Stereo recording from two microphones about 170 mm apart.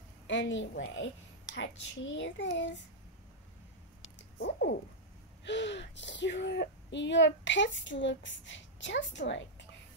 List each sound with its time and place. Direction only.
0.3 s speech: 90° left
4.2 s speech: 85° left